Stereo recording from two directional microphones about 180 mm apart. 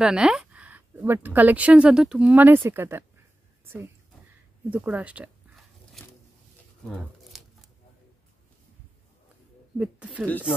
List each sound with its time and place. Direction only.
0.0 s a woman's voice: 5° right (ahead or behind)
4.6 s zipper: 10° right (ahead or behind)
7.3 s tearing: centre (ahead or behind)
9.8 s a woman's voice: 5° right (ahead or behind)